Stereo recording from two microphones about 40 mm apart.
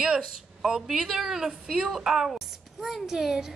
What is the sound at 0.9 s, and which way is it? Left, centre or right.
A woman's voice, centre.